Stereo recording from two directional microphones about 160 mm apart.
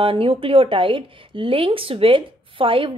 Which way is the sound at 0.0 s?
35° right (ahead or behind).